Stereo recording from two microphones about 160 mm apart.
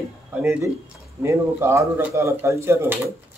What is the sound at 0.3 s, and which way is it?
Speech, 15° right (ahead or behind).